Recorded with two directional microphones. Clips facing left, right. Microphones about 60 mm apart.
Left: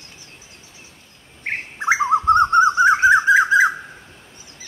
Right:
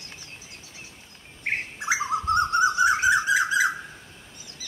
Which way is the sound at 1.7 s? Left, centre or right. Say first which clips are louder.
Left 11 dB; left.